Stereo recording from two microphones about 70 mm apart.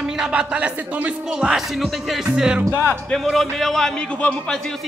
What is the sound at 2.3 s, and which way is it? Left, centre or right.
Music, centre.